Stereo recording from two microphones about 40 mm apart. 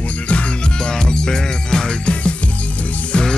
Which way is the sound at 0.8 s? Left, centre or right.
Centre.